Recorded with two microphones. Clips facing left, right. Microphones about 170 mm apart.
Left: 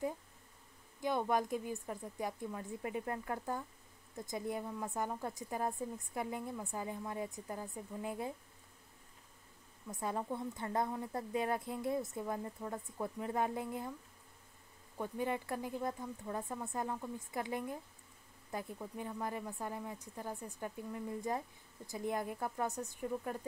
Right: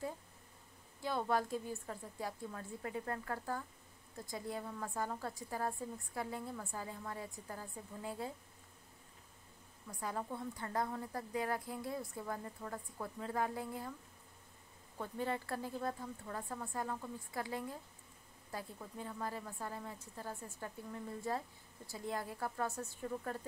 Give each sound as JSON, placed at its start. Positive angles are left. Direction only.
{"t": 1.0, "sound": "a woman's voice", "side_deg": 15}
{"t": 9.8, "sound": "a woman's voice", "side_deg": 25}
{"t": 15.0, "sound": "a woman's voice", "side_deg": 15}